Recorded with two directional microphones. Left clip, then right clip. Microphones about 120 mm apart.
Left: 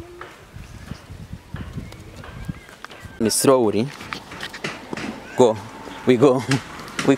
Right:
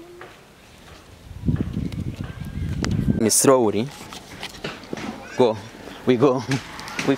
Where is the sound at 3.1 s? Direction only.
10° right (ahead or behind).